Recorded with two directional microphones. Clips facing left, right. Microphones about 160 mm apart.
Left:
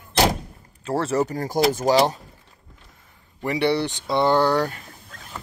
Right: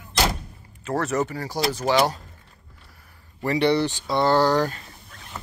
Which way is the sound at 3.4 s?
15° left (ahead or behind).